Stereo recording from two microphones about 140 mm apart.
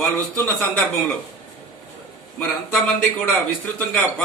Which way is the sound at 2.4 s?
10° left (ahead or behind).